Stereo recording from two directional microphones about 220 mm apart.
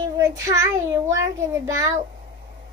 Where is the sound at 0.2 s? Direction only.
15° right (ahead or behind).